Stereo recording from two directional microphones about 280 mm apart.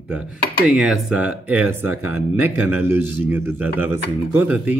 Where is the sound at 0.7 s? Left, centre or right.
Centre.